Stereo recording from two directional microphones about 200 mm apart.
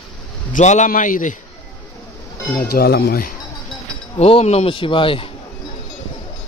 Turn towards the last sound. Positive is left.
turn(degrees=25)  # may be behind; listen again after turning